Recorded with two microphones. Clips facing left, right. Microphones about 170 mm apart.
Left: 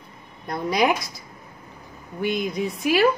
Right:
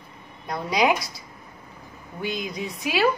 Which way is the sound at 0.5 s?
50° left (ahead or behind).